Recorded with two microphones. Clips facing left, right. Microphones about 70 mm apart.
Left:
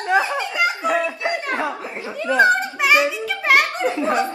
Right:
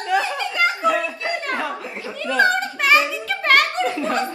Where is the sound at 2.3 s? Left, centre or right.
Left.